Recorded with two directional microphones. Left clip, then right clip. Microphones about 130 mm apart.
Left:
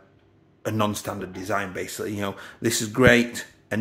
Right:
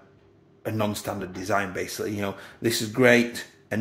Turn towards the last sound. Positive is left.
turn(degrees=20)  # may be behind; listen again after turning